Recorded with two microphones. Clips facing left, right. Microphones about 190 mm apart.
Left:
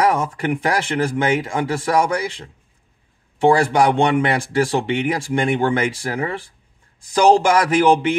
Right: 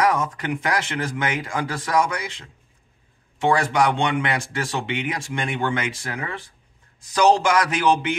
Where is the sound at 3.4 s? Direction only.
30° left (ahead or behind).